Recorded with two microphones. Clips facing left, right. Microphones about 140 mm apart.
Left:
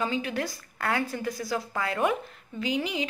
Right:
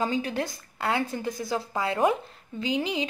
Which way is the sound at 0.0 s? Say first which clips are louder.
Right 2 dB; 35° right (ahead or behind).